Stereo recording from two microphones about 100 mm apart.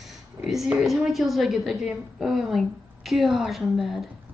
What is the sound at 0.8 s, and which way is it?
A woman's voice, centre (ahead or behind).